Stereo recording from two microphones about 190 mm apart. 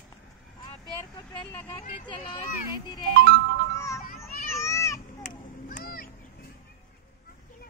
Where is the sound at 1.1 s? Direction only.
20° left (ahead or behind).